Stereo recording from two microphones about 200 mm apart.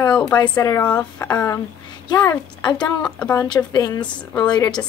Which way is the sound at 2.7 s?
5° left (ahead or behind).